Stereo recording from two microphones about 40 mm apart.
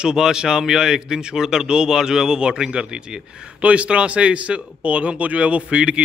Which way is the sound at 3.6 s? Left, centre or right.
Right.